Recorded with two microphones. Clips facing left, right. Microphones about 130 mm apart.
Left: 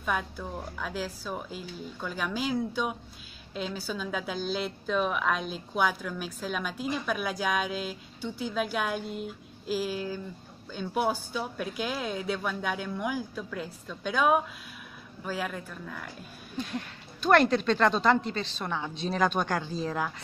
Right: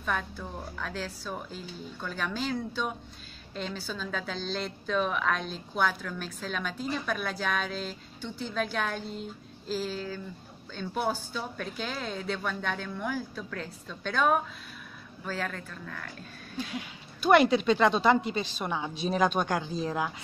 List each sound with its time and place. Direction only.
0.0 s a woman's voice: 5° left (ahead or behind)
16.5 s speech: 5° right (ahead or behind)